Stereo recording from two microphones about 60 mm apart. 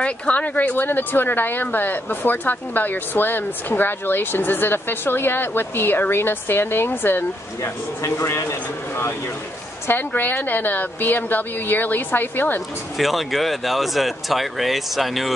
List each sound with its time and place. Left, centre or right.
0.0 s speech: left
0.7 s speech: left
8.0 s a man's voice: left
9.8 s speech: left
12.9 s speech: centre